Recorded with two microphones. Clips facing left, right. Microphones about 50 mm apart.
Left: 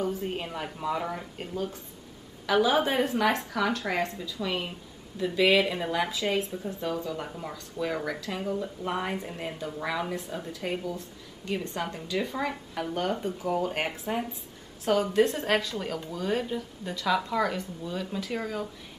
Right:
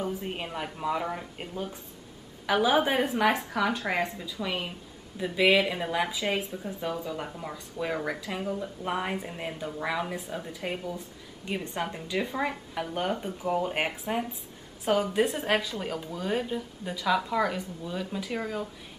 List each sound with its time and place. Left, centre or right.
0.0 s speech: centre
1.5 s speech: centre